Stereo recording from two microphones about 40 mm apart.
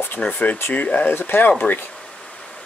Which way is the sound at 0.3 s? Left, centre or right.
Left.